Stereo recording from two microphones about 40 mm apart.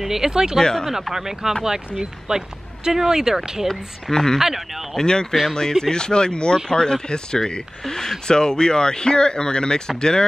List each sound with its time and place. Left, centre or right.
0.0 s speech: centre
0.6 s speech: centre
1.1 s speech: centre
4.1 s speech: centre
4.4 s speech: centre
4.9 s speech: centre